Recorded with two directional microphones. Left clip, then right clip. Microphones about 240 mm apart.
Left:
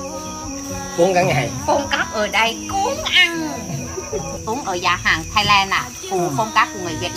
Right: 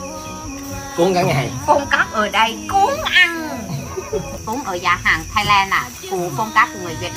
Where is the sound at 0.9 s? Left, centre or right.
Centre.